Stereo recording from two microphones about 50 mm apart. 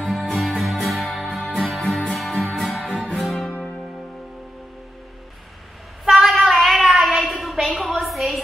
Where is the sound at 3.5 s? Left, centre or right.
Left.